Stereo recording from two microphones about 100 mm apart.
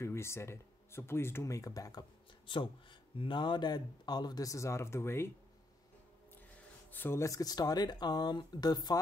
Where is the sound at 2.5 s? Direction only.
55° left (ahead or behind); by 5.3 s 25° left (ahead or behind).